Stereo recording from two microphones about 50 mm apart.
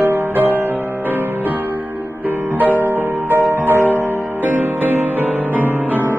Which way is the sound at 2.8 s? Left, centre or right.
Right.